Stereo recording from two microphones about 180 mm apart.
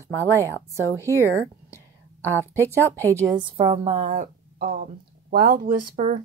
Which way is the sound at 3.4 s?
30° right (ahead or behind).